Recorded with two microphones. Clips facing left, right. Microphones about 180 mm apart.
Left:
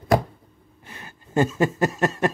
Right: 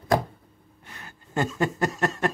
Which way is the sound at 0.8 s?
15° left (ahead or behind).